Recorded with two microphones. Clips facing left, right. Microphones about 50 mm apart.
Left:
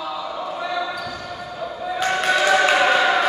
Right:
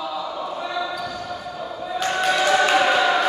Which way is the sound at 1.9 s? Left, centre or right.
Centre.